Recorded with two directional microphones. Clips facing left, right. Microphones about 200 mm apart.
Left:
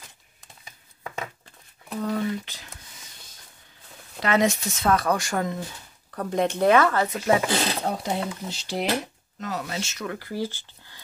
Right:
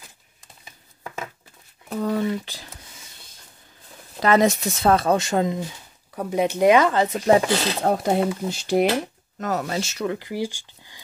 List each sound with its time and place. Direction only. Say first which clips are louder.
2.0 s speech: right 3 dB; 35° right (ahead or behind)
4.2 s speech: right 4 dB; 40° right (ahead or behind); by 5.7 s 20° right (ahead or behind)
6.1 s speech: right 2 dB; 10° right (ahead or behind)
7.2 s speech: right 6 dB; 35° right (ahead or behind)
7.8 s speech: right 7 dB; 50° right (ahead or behind)
9.7 s speech: right 6 dB; 35° right (ahead or behind)
10.1 s speech: right 2 dB; 15° right (ahead or behind)